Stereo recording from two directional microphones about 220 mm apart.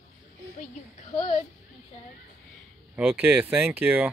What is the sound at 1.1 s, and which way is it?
Speech, 25° left (ahead or behind).